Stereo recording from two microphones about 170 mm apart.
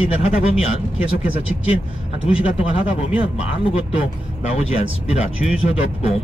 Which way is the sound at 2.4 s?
35° left (ahead or behind).